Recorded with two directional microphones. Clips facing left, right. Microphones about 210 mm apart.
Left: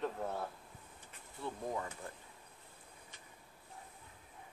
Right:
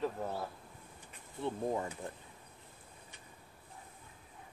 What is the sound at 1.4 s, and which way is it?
Speech, 25° right (ahead or behind).